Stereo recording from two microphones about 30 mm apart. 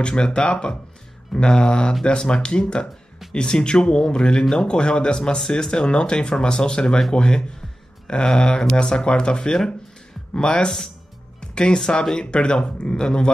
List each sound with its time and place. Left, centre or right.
0.0 s speech: left